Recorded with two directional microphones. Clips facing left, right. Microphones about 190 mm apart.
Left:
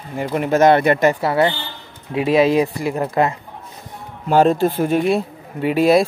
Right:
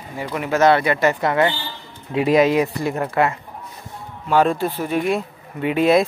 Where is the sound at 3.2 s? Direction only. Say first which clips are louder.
Left 1 dB; 30° left (ahead or behind).